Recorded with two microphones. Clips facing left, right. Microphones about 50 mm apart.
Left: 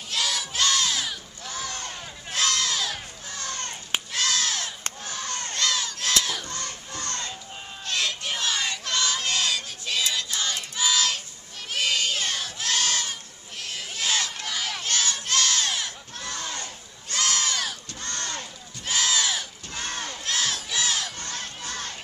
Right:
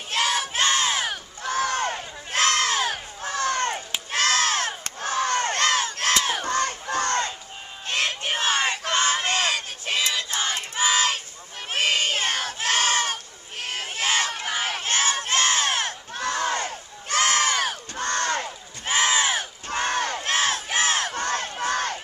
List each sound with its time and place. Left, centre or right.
0.1 s crowd: right
1.0 s a sound: right
4.1 s crowd: right
11.7 s a sound: right
14.4 s crowd: right
15.8 s crowd: right